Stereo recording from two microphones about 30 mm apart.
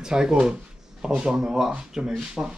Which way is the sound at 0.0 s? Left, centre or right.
Right.